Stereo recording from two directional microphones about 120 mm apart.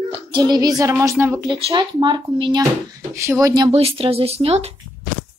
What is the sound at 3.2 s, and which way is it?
Child singing, 25° right (ahead or behind).